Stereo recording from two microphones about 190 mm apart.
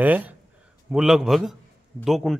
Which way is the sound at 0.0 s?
10° right (ahead or behind).